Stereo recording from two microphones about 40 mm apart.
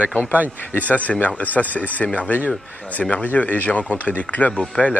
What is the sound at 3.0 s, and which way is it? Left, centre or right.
Speech, centre.